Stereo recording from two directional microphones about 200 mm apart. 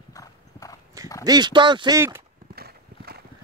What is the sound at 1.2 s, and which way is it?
Speech, 20° right (ahead or behind).